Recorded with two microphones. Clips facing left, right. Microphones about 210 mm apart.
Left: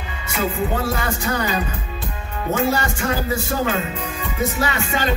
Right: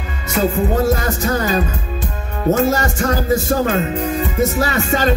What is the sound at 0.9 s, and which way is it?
Music, 40° right (ahead or behind).